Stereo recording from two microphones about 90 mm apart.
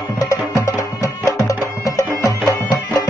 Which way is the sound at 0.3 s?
35° left (ahead or behind).